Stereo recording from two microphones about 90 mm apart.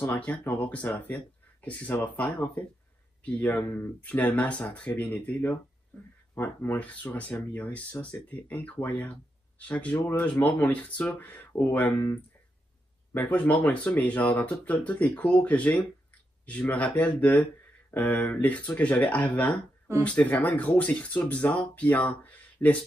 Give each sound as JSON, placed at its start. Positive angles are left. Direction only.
{"t": 0.2, "sound": "speech", "side_deg": 20}
{"t": 13.1, "sound": "speech", "side_deg": 20}
{"t": 22.2, "sound": "a sound", "side_deg": 20}